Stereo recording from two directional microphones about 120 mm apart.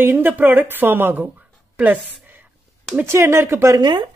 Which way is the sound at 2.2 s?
15° right (ahead or behind).